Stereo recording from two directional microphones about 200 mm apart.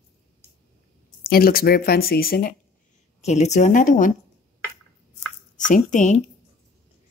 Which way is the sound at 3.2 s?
35° left (ahead or behind).